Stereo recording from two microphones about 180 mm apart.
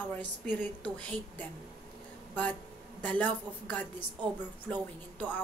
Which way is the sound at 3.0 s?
10° left (ahead or behind).